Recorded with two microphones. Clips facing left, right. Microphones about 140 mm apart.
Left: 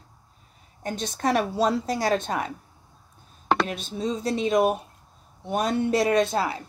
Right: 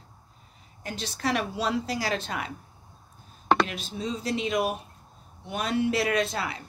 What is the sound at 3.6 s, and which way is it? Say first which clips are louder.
A woman's voice: left 4 dB; 40° left (ahead or behind).